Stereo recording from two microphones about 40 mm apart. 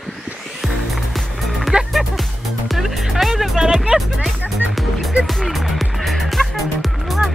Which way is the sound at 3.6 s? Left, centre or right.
Right.